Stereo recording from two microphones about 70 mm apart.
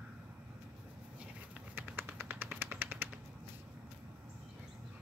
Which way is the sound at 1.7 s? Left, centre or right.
Right.